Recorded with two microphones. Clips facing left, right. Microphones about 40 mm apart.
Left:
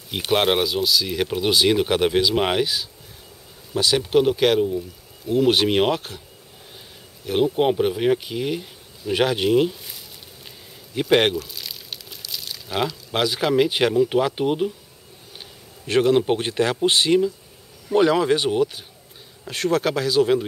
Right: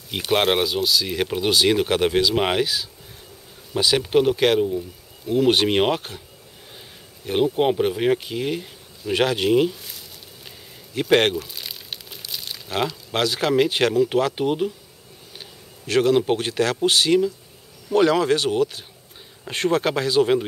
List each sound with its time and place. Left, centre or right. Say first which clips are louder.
0.3 s speech: even; centre
7.2 s speech: even; centre
9.5 s a sound: even; centre
11.0 s speech: even; centre
11.3 s crumpling: even; centre
12.6 s speech: even; centre
16.0 s speech: even; centre
16.3 s speech: even; centre
17.8 s speech: even; centre
19.4 s speech: even; centre